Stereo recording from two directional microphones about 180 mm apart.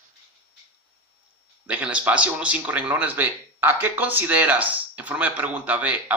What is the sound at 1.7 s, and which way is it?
A man's voice, 5° right (ahead or behind).